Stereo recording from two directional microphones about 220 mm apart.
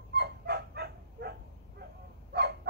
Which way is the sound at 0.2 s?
50° right (ahead or behind).